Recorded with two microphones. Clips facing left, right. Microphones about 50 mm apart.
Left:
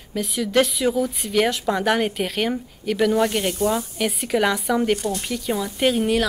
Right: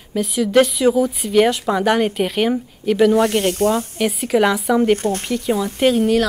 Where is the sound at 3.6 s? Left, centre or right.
Right.